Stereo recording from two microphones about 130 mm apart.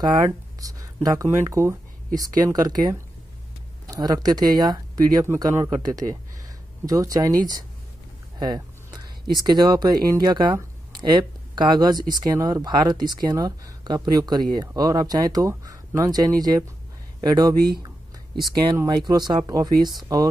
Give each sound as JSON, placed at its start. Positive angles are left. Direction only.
{"t": 0.0, "sound": "speech", "side_deg": -30}
{"t": 5.2, "sound": "speech", "side_deg": -20}
{"t": 8.4, "sound": "a sound", "side_deg": -30}
{"t": 9.4, "sound": "speech", "side_deg": -35}
{"t": 17.2, "sound": "a sound", "side_deg": -30}
{"t": 18.9, "sound": "speech", "side_deg": -35}